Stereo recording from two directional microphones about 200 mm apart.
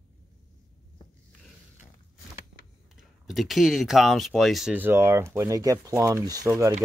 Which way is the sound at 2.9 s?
Centre (ahead or behind).